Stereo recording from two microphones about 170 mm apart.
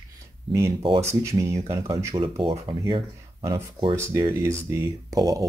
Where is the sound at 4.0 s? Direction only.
20° right (ahead or behind).